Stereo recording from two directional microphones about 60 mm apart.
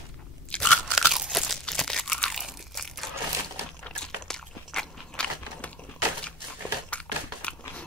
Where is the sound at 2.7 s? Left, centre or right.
Centre.